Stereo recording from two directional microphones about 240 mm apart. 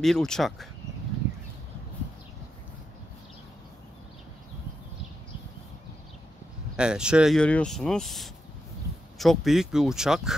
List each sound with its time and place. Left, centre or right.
0.0 s speech: centre
6.8 s speech: centre